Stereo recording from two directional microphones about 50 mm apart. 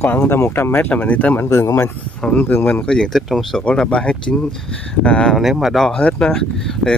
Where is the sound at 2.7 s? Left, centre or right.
Centre.